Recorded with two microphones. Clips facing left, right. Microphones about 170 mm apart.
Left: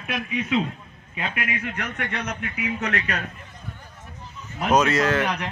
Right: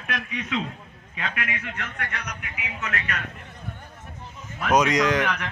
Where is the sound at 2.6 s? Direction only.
35° left (ahead or behind).